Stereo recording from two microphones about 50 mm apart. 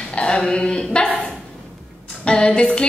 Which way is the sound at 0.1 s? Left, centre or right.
Centre.